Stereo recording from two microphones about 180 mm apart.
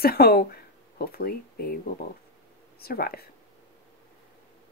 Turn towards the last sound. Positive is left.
turn(degrees=55)  # may be behind; listen again after turning